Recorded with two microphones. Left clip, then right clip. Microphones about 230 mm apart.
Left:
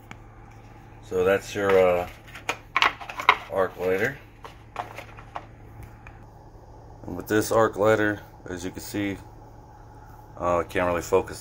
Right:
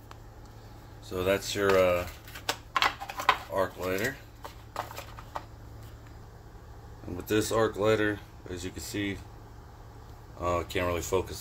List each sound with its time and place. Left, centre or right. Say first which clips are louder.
1.1 s speech: left 6 dB; centre
2.7 s a sound: left 5 dB; centre
7.2 s speech: left 6 dB; centre
10.4 s speech: left 6 dB; centre